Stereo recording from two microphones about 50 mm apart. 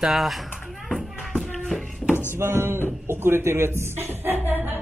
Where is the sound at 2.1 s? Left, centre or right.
Left.